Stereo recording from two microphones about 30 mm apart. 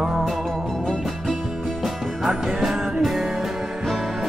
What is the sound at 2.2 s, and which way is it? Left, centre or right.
Music, centre.